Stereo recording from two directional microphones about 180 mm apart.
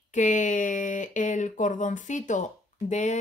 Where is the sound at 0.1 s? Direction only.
45° left (ahead or behind).